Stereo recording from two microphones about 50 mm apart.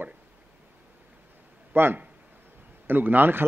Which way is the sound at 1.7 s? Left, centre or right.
Right.